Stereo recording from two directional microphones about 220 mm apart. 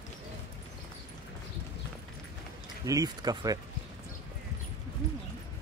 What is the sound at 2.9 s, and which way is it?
Speech, 15° right (ahead or behind).